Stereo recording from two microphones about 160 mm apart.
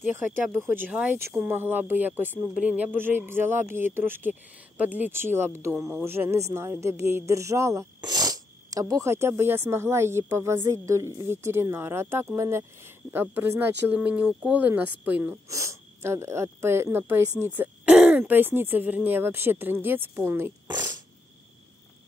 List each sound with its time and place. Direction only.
0.0 s speech: 10° right (ahead or behind)
20.6 s fart: 25° right (ahead or behind)